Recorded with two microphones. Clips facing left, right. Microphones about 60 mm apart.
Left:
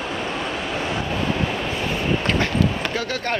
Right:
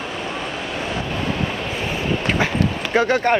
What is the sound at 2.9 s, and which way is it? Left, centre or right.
Speech, right.